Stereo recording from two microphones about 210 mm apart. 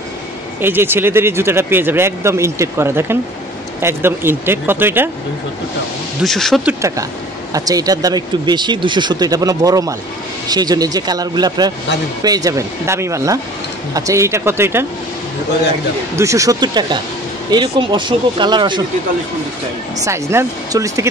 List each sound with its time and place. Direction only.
0.6 s speech: 10° right (ahead or behind)
6.2 s speech: centre (ahead or behind)
16.2 s speech: 15° right (ahead or behind)
20.1 s speech: 15° right (ahead or behind)